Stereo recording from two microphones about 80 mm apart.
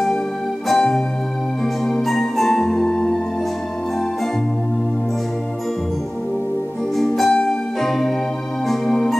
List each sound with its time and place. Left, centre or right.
0.7 s music: centre
7.0 s music: centre
8.6 s organ: centre